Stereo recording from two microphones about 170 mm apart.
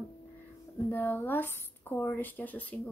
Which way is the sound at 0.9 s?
15° left (ahead or behind).